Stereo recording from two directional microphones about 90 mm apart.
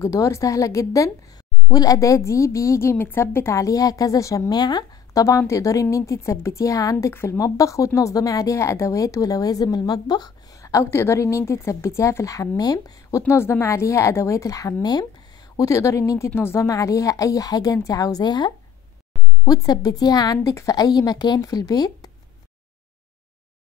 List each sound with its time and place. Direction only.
0.0 s speech: 35° left (ahead or behind)
4.6 s speech: 50° left (ahead or behind)
13.3 s a woman's voice: 30° left (ahead or behind); by 22.1 s 45° left (ahead or behind)